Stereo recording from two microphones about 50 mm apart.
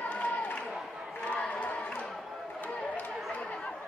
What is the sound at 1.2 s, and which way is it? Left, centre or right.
Crowd, left.